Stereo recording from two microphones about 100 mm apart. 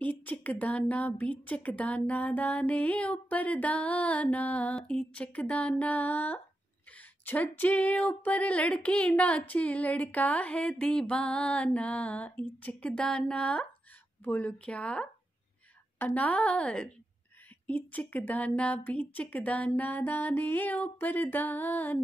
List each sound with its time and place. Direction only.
0.0 s speech: 15° left (ahead or behind)